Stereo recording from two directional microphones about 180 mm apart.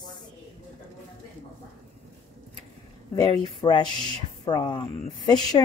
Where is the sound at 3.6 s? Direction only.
25° left (ahead or behind).